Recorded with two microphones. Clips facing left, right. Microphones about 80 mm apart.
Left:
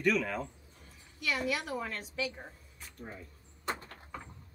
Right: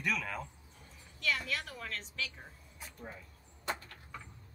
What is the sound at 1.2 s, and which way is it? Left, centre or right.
A woman's voice, centre.